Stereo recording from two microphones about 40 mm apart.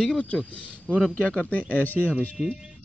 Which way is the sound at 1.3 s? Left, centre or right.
Left.